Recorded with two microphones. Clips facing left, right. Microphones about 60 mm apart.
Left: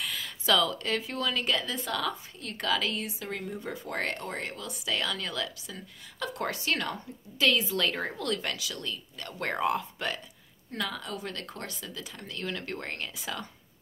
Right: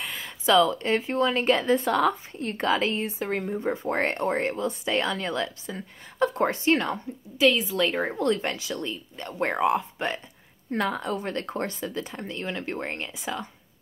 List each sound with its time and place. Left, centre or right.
0.0 s speech: right
8.1 s speech: right
10.7 s speech: right; by 13.5 s centre